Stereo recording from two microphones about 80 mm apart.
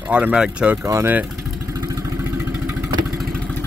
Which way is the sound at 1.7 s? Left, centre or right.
Right.